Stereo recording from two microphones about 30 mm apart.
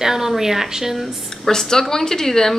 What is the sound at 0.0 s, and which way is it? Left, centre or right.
Speech, centre.